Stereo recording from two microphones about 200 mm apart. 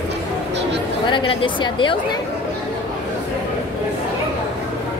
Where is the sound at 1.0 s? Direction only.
25° left (ahead or behind).